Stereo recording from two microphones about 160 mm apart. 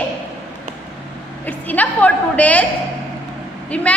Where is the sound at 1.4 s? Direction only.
10° left (ahead or behind).